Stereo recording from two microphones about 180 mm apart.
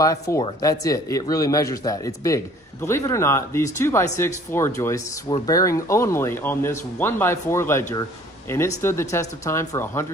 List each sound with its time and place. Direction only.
0.0 s speech: 20° left (ahead or behind)